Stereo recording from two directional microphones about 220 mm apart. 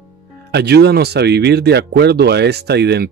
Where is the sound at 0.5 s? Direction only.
45° right (ahead or behind).